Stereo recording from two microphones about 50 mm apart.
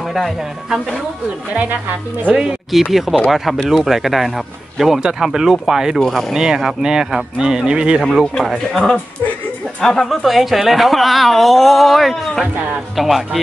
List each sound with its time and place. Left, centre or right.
0.0 s speech: centre
1.5 s a woman's voice: right
2.9 s speech: centre
5.9 s speech: centre
6.3 s speech: centre
8.0 s a woman's voice: centre
10.0 s speech: centre